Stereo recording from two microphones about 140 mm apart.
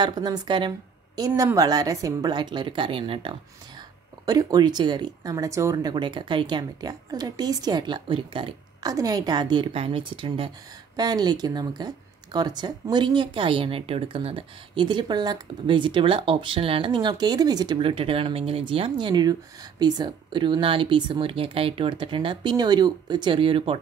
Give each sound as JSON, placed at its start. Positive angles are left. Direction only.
{"t": 0.0, "sound": "speech", "side_deg": -30}
{"t": 4.3, "sound": "speech", "side_deg": -30}
{"t": 8.9, "sound": "speech", "side_deg": -25}